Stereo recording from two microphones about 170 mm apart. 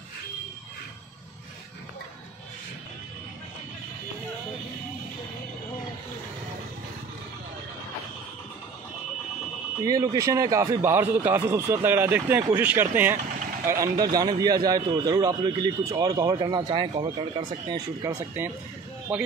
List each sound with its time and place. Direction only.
9.8 s a man's voice: 20° right (ahead or behind)
18.4 s a man's voice: 15° right (ahead or behind)